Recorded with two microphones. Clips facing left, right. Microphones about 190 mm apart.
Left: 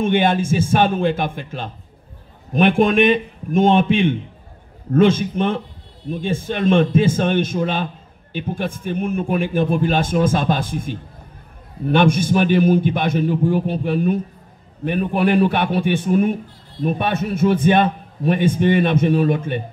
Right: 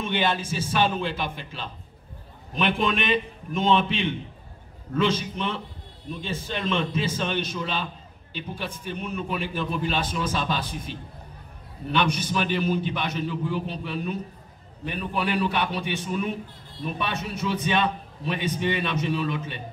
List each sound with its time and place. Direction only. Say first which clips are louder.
0.0 s a man's voice: left 9 dB; 50° left (ahead or behind)